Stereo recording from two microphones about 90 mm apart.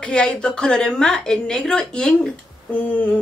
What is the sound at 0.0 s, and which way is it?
Speech, 10° left (ahead or behind).